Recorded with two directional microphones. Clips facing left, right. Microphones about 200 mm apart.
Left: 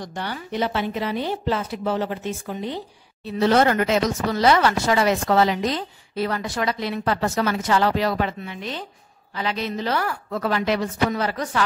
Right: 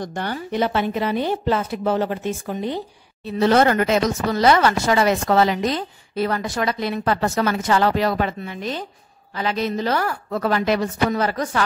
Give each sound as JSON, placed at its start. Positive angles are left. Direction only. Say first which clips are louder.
{"t": 0.0, "sound": "speech", "louder": "right 4 dB", "side_deg": -50}